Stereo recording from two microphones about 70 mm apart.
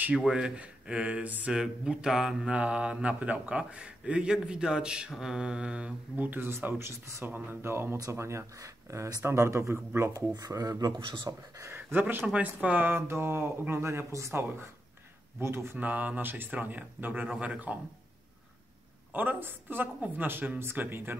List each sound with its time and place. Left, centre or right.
0.3 s mantra: centre
1.5 s mantra: centre; by 6.5 s right
6.6 s speech: right
7.2 s speech: right
10.3 s speech: right
11.7 s speech: right
15.8 s speech: right
19.1 s speech: right